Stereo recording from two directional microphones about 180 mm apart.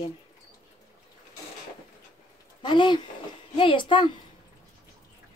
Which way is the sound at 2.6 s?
25° left (ahead or behind).